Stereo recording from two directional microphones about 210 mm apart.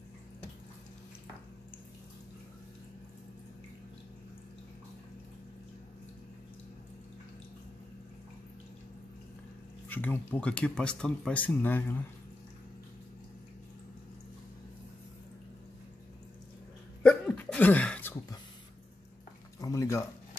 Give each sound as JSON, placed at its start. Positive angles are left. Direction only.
{"t": 9.8, "sound": "speech", "side_deg": 10}
{"t": 17.0, "sound": "hiccup", "side_deg": 5}
{"t": 19.6, "sound": "a sound", "side_deg": 15}